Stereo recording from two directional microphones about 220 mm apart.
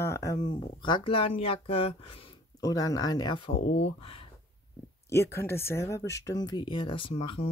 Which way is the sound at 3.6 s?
50° left (ahead or behind).